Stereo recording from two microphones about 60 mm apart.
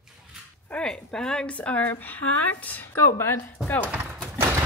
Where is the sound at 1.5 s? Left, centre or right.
Left.